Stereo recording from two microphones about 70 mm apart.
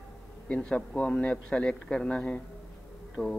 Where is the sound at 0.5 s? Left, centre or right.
Centre.